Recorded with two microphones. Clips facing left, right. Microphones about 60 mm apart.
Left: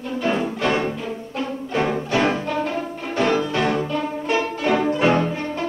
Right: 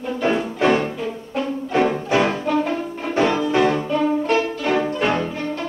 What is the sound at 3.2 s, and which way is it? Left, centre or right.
Music, centre.